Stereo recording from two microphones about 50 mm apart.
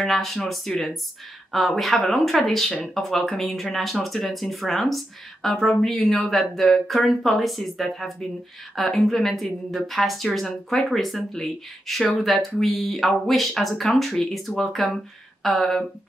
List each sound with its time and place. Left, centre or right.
0.0 s speech: centre